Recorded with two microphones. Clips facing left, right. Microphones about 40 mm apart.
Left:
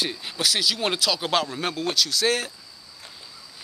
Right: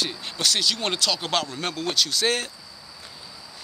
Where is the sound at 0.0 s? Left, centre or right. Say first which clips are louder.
Even; centre.